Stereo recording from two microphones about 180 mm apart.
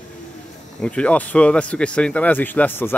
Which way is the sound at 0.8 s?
5° left (ahead or behind).